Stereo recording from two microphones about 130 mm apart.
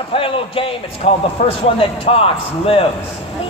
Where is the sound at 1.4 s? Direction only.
70° left (ahead or behind).